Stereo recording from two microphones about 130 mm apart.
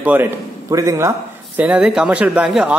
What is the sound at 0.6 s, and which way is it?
Speech, 25° right (ahead or behind).